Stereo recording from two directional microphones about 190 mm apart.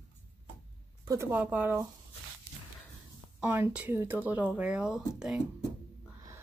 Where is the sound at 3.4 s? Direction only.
10° right (ahead or behind).